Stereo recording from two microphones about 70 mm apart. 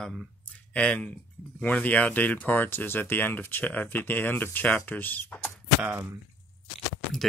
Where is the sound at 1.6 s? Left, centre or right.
Left.